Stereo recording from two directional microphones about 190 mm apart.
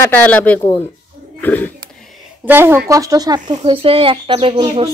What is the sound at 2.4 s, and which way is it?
A woman's voice, 10° right (ahead or behind).